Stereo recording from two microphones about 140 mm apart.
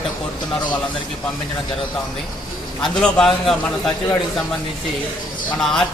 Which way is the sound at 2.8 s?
5° left (ahead or behind).